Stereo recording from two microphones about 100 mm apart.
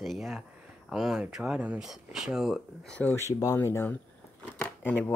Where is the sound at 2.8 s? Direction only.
10° left (ahead or behind).